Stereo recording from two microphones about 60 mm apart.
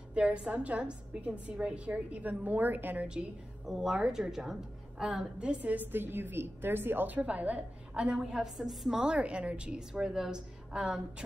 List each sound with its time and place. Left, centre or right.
0.1 s a woman's voice: centre
3.1 s a woman's voice: centre; by 7.2 s right
7.2 s a woman's voice: right